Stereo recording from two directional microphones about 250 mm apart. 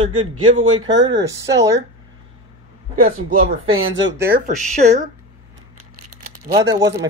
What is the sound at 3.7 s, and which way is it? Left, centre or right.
Speech, right.